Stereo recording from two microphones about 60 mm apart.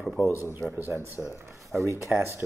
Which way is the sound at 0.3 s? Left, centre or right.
Right.